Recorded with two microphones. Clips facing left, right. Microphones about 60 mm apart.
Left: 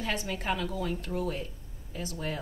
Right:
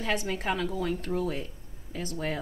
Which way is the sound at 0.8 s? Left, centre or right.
Right.